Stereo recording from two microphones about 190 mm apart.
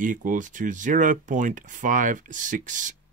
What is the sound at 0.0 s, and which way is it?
Speech, 45° right (ahead or behind).